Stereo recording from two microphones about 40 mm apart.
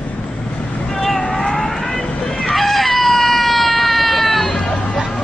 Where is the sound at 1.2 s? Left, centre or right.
Centre.